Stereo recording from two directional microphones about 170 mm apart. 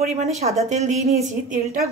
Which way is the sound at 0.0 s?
40° right (ahead or behind).